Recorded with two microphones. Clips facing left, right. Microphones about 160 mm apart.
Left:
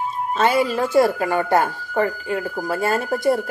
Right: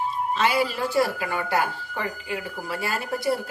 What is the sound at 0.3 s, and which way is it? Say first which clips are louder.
Speech: left 6 dB; 50° left (ahead or behind).